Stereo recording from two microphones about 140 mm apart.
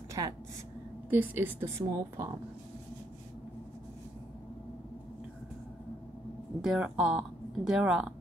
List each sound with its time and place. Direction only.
0.2 s a woman's voice: 30° right (ahead or behind)
1.1 s a woman's voice: 15° right (ahead or behind)
6.6 s a woman's voice: 5° right (ahead or behind)